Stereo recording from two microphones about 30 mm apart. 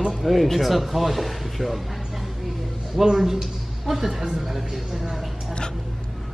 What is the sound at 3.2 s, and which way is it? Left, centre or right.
A woman's voice, centre.